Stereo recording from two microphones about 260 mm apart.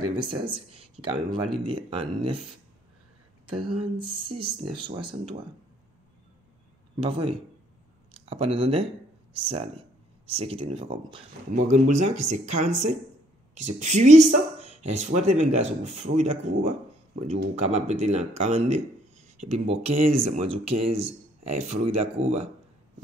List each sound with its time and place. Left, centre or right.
0.2 s speech: centre
3.4 s speech: centre
7.0 s speech: centre